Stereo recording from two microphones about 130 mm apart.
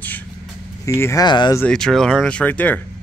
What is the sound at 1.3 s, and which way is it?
Speech, 35° left (ahead or behind).